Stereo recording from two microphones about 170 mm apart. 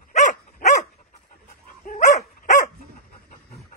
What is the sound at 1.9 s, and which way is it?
Dog, 45° left (ahead or behind).